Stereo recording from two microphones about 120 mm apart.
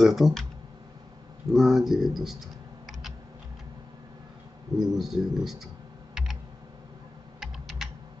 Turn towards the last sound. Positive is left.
turn(degrees=0)  # may be behind; listen again after turning